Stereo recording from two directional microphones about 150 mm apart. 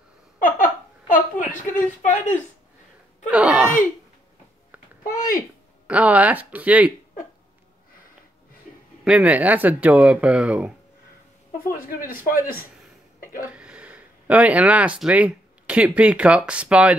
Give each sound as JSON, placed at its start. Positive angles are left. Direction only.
{"t": 0.4, "sound": "a sound", "side_deg": 65}
{"t": 1.5, "sound": "speech", "side_deg": 60}
{"t": 3.3, "sound": "speech", "side_deg": -10}
{"t": 5.0, "sound": "a sound", "side_deg": 65}
{"t": 5.9, "sound": "speech", "side_deg": -10}
{"t": 9.0, "sound": "speech", "side_deg": -5}
{"t": 11.7, "sound": "speech", "side_deg": 70}
{"t": 13.5, "sound": "speech", "side_deg": -5}